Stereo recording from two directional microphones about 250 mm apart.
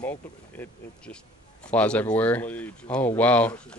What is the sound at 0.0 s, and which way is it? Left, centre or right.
Speech, centre.